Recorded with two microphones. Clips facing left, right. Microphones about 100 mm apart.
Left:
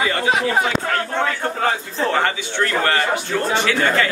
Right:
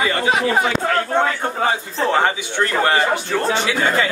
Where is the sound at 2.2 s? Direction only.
15° right (ahead or behind).